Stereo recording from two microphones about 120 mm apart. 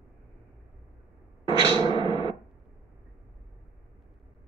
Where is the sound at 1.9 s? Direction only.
40° right (ahead or behind).